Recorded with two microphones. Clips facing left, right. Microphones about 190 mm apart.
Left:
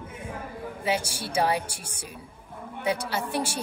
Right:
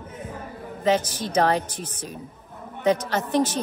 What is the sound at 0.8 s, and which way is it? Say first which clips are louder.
A woman's voice: right 7 dB; 10° left (ahead or behind).